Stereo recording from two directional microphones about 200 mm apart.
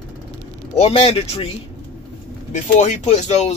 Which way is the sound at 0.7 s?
30° left (ahead or behind).